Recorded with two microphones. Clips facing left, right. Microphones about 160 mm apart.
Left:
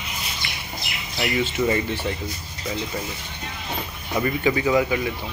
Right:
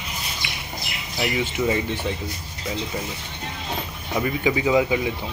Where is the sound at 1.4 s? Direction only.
10° right (ahead or behind).